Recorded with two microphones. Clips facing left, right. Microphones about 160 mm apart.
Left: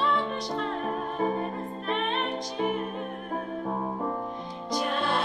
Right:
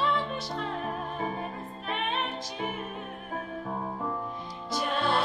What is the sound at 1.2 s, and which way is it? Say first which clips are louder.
Music: left 8 dB; 45° left (ahead or behind).